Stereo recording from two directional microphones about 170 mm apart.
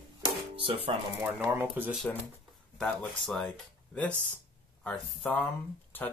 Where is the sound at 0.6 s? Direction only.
35° right (ahead or behind).